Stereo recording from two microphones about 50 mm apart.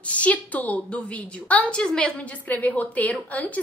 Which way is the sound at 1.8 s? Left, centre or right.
Centre.